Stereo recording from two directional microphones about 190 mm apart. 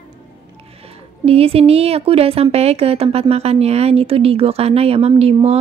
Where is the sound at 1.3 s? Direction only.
30° right (ahead or behind).